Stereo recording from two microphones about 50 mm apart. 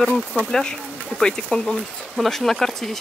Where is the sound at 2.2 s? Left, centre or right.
Centre.